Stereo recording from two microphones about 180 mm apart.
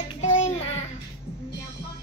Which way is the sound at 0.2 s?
35° left (ahead or behind).